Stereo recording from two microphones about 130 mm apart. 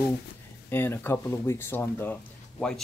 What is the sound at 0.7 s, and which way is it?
Speech, 15° left (ahead or behind).